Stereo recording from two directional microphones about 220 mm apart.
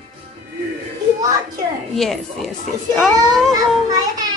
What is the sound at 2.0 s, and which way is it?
A woman's voice, centre (ahead or behind).